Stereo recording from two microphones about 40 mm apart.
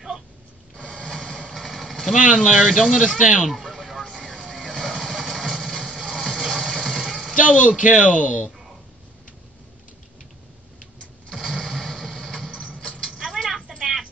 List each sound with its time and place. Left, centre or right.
1.0 s a sound: centre
1.5 s vehicle: centre
2.8 s a man's voice: centre
3.4 s a sound: centre
4.1 s vehicle: centre
5.9 s music: centre
6.3 s vehicle: centre
7.4 s a man's voice: right
11.6 s vehicle: centre
13.4 s a sound: centre